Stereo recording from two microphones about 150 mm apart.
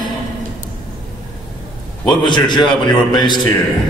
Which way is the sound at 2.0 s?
30° left (ahead or behind).